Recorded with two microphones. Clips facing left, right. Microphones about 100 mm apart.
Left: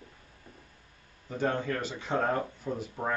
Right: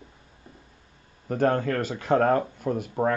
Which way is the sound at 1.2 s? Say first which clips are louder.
Right 7 dB; 55° right (ahead or behind).